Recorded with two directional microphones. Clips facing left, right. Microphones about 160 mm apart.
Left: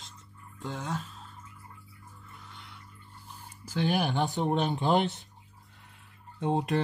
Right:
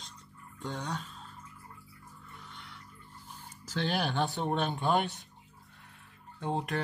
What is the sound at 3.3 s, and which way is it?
Speech, 10° left (ahead or behind).